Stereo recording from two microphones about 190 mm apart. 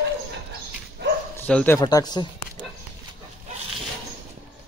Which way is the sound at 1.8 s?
20° left (ahead or behind).